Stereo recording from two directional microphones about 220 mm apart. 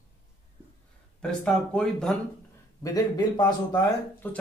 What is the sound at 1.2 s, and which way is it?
Speech, 5° left (ahead or behind).